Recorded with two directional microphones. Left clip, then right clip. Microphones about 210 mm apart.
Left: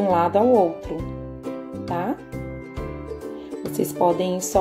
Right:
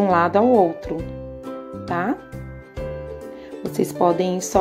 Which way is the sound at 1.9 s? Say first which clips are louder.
Right 3 dB; 20° right (ahead or behind).